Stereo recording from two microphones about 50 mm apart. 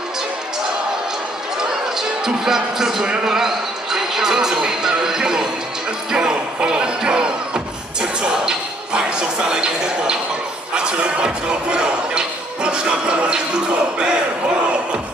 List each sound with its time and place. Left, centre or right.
1.6 s speech: centre
10.7 s music: centre